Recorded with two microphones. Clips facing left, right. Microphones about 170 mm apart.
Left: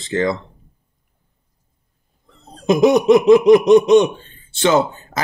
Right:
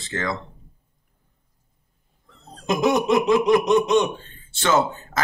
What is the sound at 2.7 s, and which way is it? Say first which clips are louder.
A man's voice: left 8 dB; 15° left (ahead or behind).